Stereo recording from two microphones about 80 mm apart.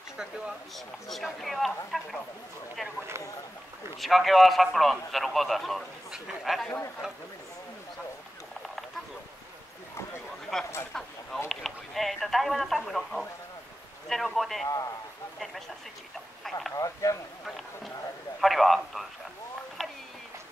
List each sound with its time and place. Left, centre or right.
1.0 s speech: centre
4.0 s speech: centre
10.5 s speech: centre
14.7 s speech: left
16.4 s speech: centre
16.7 s speech: left
18.4 s speech: centre
19.8 s a sound: centre